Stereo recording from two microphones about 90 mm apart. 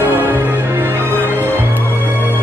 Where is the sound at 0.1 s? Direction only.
20° right (ahead or behind).